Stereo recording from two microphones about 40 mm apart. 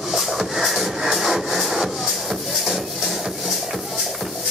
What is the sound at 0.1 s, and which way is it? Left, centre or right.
Wood, centre.